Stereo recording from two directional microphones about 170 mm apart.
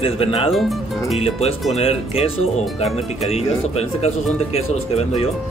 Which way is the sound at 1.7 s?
35° left (ahead or behind).